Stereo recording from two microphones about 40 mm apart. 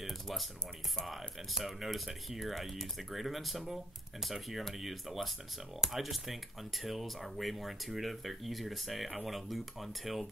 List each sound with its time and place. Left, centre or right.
0.0 s music: centre
0.9 s speech: centre